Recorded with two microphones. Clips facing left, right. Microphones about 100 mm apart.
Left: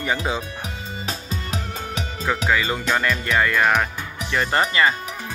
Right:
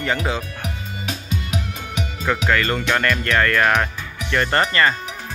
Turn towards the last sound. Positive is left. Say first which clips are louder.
# right 1 dB
turn(degrees=5)  # may be behind; listen again after turning